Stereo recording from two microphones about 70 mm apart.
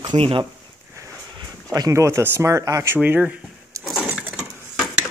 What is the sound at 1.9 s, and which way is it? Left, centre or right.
Speech, right.